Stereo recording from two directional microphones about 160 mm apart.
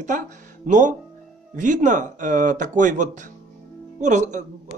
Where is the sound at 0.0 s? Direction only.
50° right (ahead or behind).